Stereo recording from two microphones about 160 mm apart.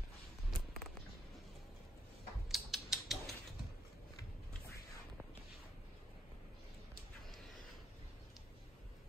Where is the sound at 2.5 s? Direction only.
Centre (ahead or behind).